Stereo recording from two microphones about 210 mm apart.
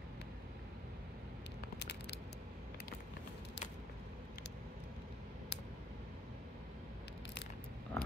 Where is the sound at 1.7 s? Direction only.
55° left (ahead or behind).